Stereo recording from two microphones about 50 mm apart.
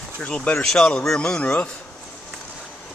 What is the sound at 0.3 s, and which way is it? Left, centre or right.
A man's voice, centre.